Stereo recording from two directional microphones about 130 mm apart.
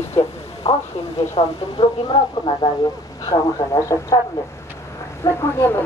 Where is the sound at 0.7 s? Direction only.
50° left (ahead or behind).